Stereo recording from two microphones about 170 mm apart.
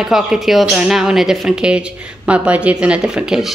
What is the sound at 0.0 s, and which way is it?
Speech, centre (ahead or behind).